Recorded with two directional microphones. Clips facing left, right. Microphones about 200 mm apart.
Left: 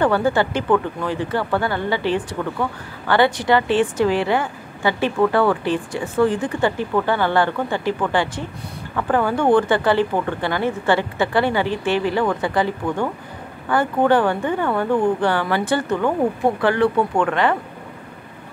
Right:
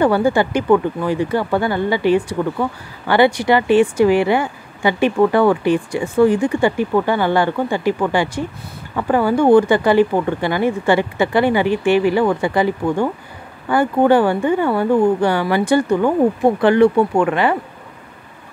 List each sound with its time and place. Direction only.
0.0 s speech: 10° right (ahead or behind)